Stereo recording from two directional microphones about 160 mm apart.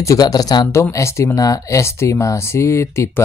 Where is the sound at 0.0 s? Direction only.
20° left (ahead or behind).